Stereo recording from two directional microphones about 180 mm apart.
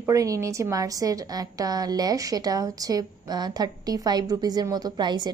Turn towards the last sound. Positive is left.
turn(degrees=-25)  # may be behind; listen again after turning